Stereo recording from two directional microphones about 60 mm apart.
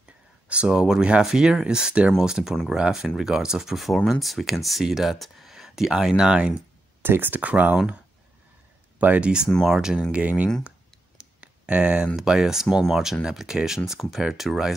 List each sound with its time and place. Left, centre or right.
0.5 s speech: centre
7.0 s speech: right
8.9 s speech: right
9.7 s speech: centre
10.1 s speech: right
11.1 s clicking: centre
12.2 s speech: centre